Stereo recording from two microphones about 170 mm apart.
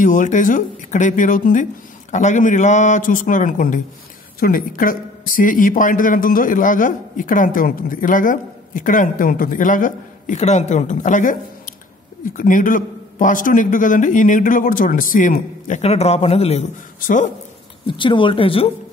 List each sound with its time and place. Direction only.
0.0 s speech: 50° left (ahead or behind)
17.0 s speech: 50° left (ahead or behind)
17.8 s speech: 30° left (ahead or behind)